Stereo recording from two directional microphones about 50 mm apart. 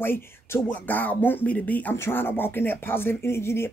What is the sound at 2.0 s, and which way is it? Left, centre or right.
Speech, left.